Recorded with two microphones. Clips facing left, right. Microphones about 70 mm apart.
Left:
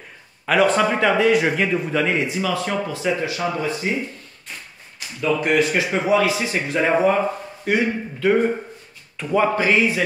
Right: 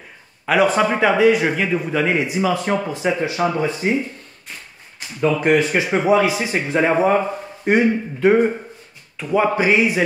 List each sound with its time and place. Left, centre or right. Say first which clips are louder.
0.5 s a man's voice: right 1 dB; centre; by 3.9 s right
5.4 s speech: right 1 dB; right
9.2 s speech: right 1 dB; centre